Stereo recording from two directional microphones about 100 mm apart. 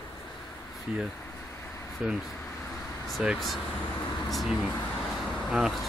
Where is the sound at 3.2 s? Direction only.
Centre (ahead or behind).